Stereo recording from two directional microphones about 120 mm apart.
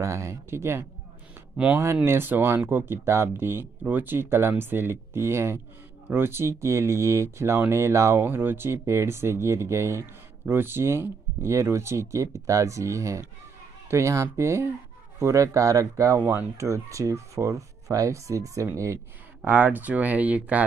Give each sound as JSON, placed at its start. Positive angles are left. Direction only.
{"t": 0.0, "sound": "speech", "side_deg": -25}
{"t": 2.0, "sound": "speech", "side_deg": -20}
{"t": 19.4, "sound": "speech", "side_deg": -15}